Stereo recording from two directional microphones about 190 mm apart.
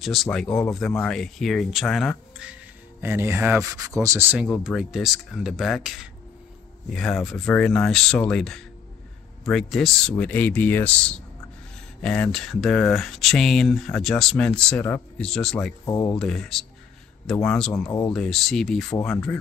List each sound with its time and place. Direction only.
0.0 s speech: centre (ahead or behind)
15.8 s speech: 20° left (ahead or behind)
16.2 s speech: centre (ahead or behind)
17.8 s speech: 15° left (ahead or behind)
18.1 s speech: centre (ahead or behind)